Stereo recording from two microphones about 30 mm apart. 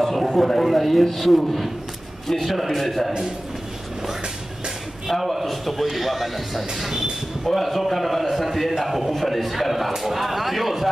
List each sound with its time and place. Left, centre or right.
0.0 s a sound: centre
0.7 s a man's voice: centre
3.1 s a man's voice: centre
5.2 s a man's voice: centre